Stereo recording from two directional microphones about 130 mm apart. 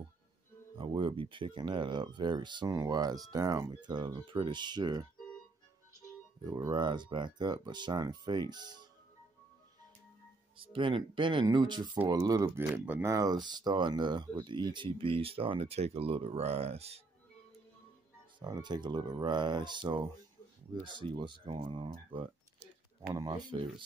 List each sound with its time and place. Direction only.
0.7 s speech: 40° right (ahead or behind)
6.4 s speech: 30° right (ahead or behind)
10.6 s speech: 40° right (ahead or behind); by 12.6 s 25° right (ahead or behind)
12.7 s speech: 15° right (ahead or behind)
13.1 s speech: 30° right (ahead or behind); by 17.0 s 55° right (ahead or behind)
18.4 s speech: 30° right (ahead or behind)